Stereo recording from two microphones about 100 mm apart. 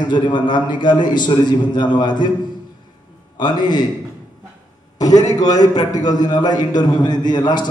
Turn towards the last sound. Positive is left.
turn(degrees=50)  # may be behind; listen again after turning